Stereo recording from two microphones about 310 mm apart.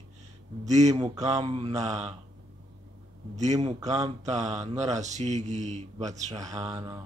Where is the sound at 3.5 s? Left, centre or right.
Right.